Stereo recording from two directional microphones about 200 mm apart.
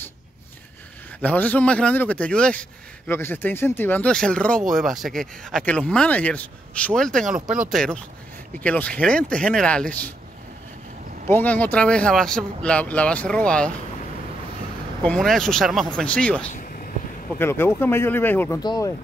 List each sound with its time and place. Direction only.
1.2 s a man's voice: 10° left (ahead or behind)
11.2 s speech: 10° left (ahead or behind)
15.0 s speech: centre (ahead or behind)
16.5 s vehicle: 45° left (ahead or behind)
17.3 s a man's voice: 10° left (ahead or behind)